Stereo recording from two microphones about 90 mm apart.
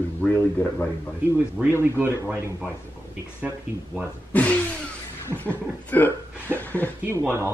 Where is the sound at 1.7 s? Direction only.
20° right (ahead or behind).